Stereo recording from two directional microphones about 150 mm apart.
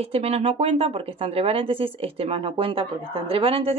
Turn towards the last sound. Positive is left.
turn(degrees=-40)  # may be behind; listen again after turning